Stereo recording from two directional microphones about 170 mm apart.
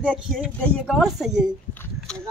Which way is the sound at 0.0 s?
5° right (ahead or behind).